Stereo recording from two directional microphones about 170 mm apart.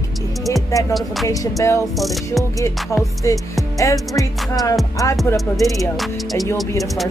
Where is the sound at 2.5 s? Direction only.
15° left (ahead or behind).